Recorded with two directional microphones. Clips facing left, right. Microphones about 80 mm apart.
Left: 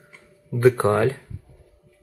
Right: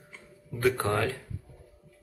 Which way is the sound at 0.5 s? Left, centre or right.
Left.